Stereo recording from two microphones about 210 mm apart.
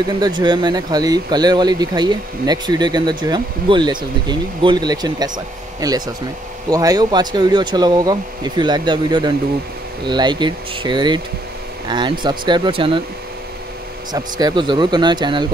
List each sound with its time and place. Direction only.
0.2 s speech: 20° right (ahead or behind)
14.1 s speech: 20° right (ahead or behind)